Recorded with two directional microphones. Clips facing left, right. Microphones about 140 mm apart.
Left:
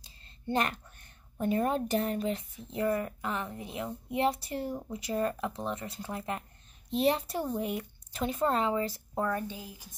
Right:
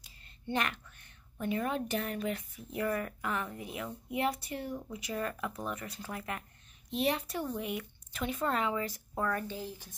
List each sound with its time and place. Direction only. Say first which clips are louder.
0.0 s a woman's voice: left 4 dB; 35° left (ahead or behind); by 9.9 s 10° left (ahead or behind)